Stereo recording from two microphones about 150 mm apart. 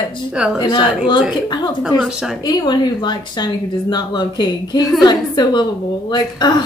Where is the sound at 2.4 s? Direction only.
30° left (ahead or behind).